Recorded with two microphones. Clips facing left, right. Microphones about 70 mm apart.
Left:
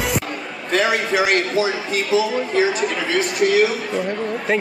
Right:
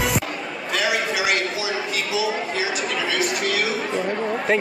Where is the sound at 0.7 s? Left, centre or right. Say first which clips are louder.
Left 5 dB; left.